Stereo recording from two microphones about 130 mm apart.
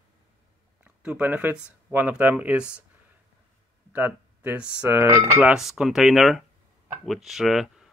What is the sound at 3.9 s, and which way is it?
Speech, 15° right (ahead or behind).